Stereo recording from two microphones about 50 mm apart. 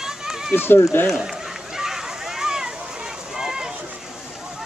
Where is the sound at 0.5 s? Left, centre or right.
Left.